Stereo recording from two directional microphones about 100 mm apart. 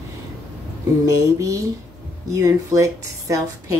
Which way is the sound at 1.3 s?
35° right (ahead or behind).